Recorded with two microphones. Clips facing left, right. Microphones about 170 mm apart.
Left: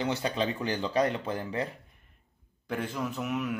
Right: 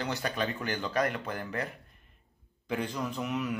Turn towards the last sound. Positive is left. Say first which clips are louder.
# left 1 dB
turn(degrees=0)  # may be behind; listen again after turning